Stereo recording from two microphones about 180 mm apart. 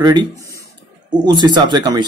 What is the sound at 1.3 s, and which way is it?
Speech, 25° right (ahead or behind).